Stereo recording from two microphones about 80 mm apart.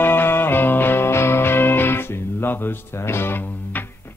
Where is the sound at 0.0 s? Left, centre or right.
Left.